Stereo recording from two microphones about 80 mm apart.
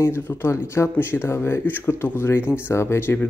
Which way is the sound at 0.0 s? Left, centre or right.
Left.